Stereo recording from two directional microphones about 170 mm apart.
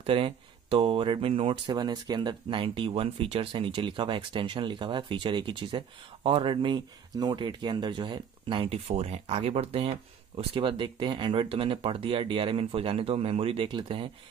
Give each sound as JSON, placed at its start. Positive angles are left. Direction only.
{"t": 0.0, "sound": "speech", "side_deg": -30}